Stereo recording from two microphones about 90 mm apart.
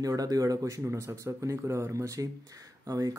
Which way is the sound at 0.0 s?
40° right (ahead or behind).